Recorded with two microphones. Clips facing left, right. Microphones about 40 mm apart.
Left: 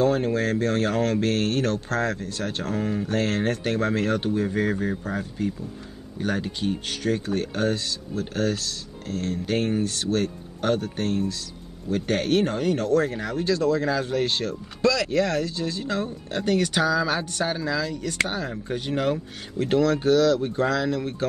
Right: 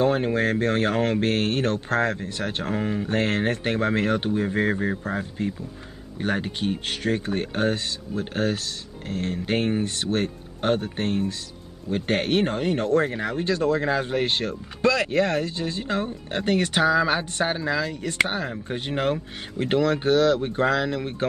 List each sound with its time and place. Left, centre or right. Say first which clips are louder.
0.0 s speech: even; right